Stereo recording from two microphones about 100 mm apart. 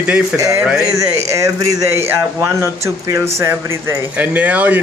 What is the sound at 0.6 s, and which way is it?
Speech, 5° right (ahead or behind).